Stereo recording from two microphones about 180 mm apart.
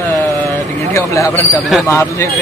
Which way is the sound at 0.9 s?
15° left (ahead or behind).